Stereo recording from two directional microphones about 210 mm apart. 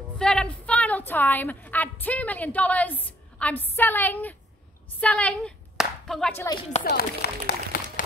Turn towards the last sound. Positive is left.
turn(degrees=45)  # may be behind; listen again after turning